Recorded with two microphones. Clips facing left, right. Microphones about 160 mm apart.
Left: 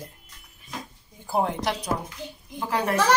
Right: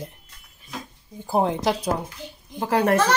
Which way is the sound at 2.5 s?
40° right (ahead or behind).